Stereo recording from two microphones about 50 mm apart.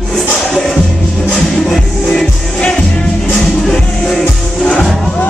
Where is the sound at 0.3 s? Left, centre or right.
Centre.